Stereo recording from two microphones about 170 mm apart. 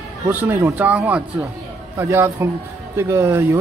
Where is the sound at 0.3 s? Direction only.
10° right (ahead or behind).